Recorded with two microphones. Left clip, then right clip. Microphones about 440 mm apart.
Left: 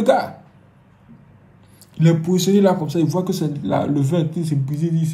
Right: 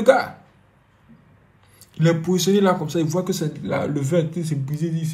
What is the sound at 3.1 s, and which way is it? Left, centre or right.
Speech, right.